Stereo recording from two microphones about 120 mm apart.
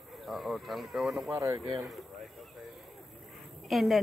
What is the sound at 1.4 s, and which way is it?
Speech, 25° right (ahead or behind).